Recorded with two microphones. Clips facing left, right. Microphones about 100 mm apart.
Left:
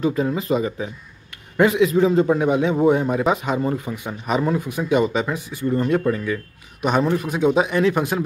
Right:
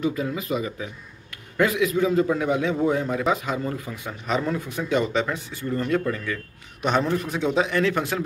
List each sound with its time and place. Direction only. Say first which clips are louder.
0.0 s a man's voice: left 5 dB; 35° left (ahead or behind); by 8.2 s 15° left (ahead or behind)